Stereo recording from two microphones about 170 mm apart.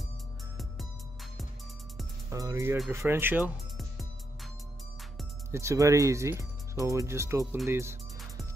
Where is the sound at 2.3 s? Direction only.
20° right (ahead or behind).